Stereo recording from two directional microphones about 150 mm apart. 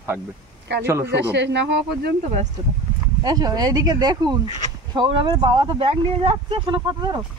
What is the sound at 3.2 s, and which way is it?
Speech, 25° right (ahead or behind).